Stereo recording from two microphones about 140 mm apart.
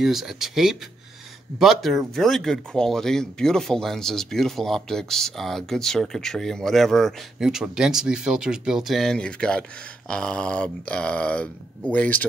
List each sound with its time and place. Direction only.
0.0 s speech: centre (ahead or behind)